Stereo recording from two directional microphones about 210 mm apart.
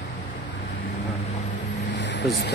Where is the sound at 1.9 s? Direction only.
55° left (ahead or behind).